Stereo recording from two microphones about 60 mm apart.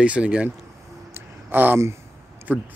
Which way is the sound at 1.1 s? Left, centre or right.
Right.